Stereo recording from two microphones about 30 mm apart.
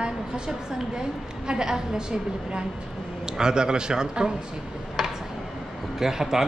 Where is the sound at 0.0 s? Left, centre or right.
Right.